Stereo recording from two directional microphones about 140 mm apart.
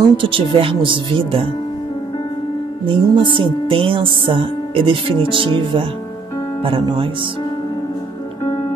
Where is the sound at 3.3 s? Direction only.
40° right (ahead or behind).